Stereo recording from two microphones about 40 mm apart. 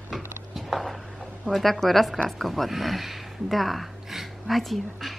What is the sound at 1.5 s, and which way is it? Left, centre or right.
Speech, centre.